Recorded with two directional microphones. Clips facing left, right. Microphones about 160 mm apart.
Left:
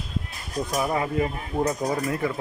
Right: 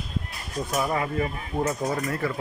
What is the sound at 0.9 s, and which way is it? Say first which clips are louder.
Speech: left 2 dB; 20° left (ahead or behind).